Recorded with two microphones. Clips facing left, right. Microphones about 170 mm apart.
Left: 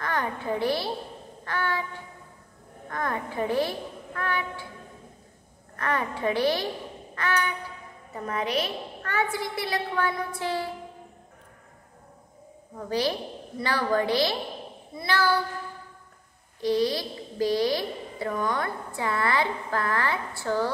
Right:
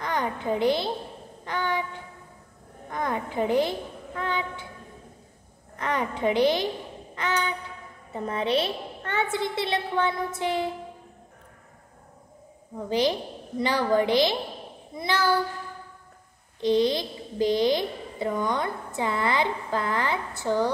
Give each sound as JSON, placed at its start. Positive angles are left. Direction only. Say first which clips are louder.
{"t": 0.0, "sound": "a child's voice", "louder": "right 1 dB", "side_deg": -20}
{"t": 1.4, "sound": "child singing", "louder": "right 1 dB", "side_deg": -20}
{"t": 2.9, "sound": "a child's voice", "louder": "right 1 dB", "side_deg": -20}
{"t": 5.8, "sound": "a child's voice", "louder": "right 1 dB", "side_deg": -20}
{"t": 13.6, "sound": "a child's voice", "louder": "right 3 dB", "side_deg": -20}
{"t": 16.6, "sound": "a child's voice", "louder": "right 2 dB", "side_deg": -20}